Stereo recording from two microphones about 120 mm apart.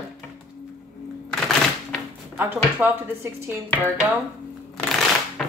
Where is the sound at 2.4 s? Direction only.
15° right (ahead or behind).